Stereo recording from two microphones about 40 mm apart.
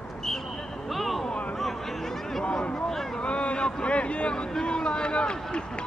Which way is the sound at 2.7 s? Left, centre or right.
Centre.